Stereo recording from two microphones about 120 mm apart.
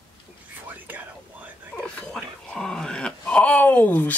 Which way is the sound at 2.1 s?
5° left (ahead or behind).